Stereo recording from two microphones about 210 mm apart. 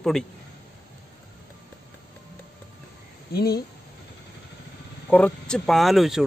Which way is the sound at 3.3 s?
50° left (ahead or behind).